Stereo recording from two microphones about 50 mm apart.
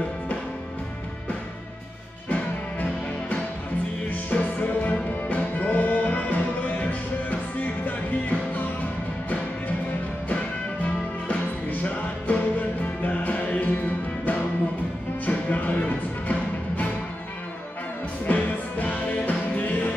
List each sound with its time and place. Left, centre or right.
2.2 s music: left
10.2 s music: left
15.2 s music: left
18.2 s music: left